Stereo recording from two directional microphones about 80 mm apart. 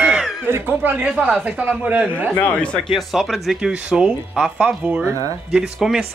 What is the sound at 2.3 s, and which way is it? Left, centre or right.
Speech, centre.